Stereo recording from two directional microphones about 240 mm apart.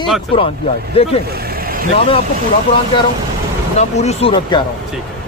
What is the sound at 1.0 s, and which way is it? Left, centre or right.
Speech, left.